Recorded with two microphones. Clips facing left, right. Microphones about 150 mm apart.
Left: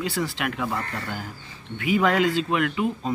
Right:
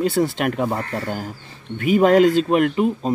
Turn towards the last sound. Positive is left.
turn(degrees=-40)  # may be behind; listen again after turning